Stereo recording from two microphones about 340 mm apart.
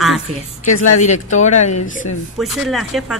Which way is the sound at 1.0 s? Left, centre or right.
Left.